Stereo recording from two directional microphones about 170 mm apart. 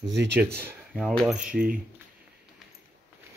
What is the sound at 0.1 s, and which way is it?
Speech, 90° right.